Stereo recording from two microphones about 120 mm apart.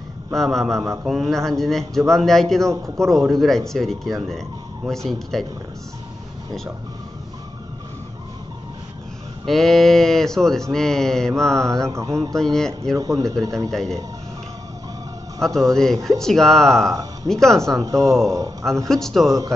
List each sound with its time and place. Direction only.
0.3 s speech: centre (ahead or behind)
9.5 s speech: centre (ahead or behind)
11.9 s mantra: 25° right (ahead or behind)
12.4 s speech: 5° left (ahead or behind)
12.9 s mantra: 25° right (ahead or behind)
13.7 s speech: 5° left (ahead or behind)
15.4 s speech: 5° left (ahead or behind)
17.8 s mantra: 25° right (ahead or behind)
18.9 s speech: 5° left (ahead or behind)